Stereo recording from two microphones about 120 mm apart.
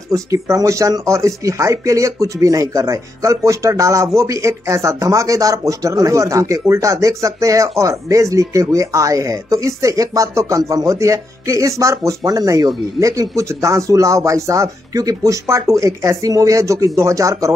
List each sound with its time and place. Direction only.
0.1 s speech: 25° right (ahead or behind)